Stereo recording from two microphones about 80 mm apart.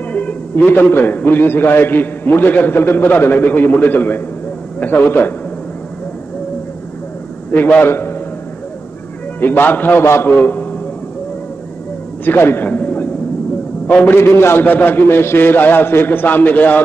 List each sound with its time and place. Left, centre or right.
0.1 s a man's voice: centre
7.5 s a man's voice: left
9.4 s a man's voice: left
12.3 s a man's voice: left